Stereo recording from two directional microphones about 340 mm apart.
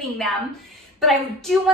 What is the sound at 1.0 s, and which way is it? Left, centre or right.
Speech, centre.